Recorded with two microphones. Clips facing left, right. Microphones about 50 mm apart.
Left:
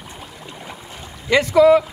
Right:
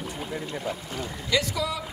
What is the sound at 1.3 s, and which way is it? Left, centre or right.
Speech, left.